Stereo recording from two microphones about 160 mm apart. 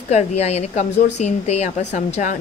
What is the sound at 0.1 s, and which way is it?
Speech, 45° left (ahead or behind).